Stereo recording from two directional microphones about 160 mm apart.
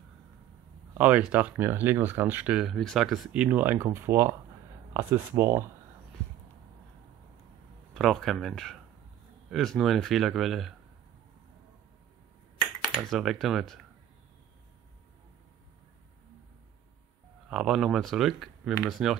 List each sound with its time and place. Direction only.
0.9 s speech: 10° right (ahead or behind)
7.9 s speech: centre (ahead or behind)
12.8 s speech: centre (ahead or behind)
17.5 s speech: 5° right (ahead or behind)